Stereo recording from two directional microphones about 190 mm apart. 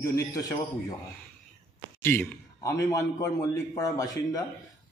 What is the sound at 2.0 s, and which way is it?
A man's voice, 15° left (ahead or behind).